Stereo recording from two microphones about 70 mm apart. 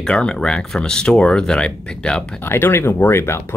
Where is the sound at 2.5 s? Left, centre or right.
Left.